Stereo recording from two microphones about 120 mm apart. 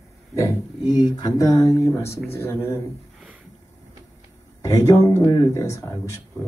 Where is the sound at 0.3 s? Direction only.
25° left (ahead or behind).